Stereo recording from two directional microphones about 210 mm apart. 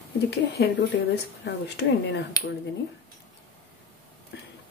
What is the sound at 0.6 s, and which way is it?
Speech, 50° left (ahead or behind).